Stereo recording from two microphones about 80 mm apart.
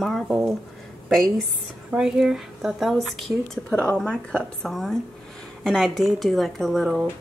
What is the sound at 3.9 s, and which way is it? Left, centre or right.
A woman's voice, centre.